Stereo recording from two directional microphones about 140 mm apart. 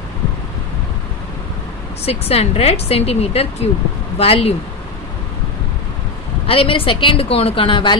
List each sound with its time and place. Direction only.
2.0 s speech: 45° left (ahead or behind)
6.4 s a woman's voice: 40° left (ahead or behind)